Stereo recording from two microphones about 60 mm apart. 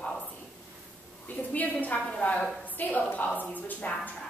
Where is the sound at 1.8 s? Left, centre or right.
Left.